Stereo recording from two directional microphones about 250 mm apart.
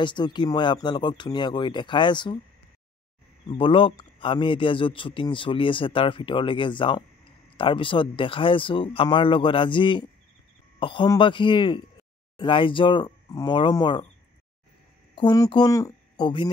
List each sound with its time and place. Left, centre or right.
0.0 s speech: centre
3.4 s speech: left
15.1 s speech: centre